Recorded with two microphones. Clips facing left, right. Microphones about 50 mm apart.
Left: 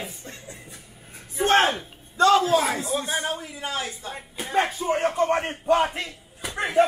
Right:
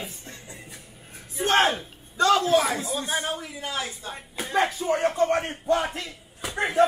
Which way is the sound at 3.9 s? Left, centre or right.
Centre.